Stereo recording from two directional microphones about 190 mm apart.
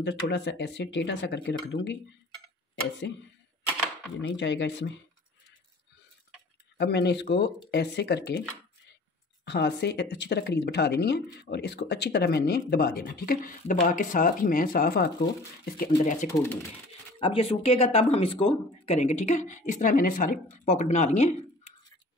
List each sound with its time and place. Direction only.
0.0 s speech: 65° left (ahead or behind)
4.4 s speech: 70° left (ahead or behind)
6.8 s speech: 60° left (ahead or behind); by 16.3 s 40° left (ahead or behind)
17.2 s speech: 30° left (ahead or behind)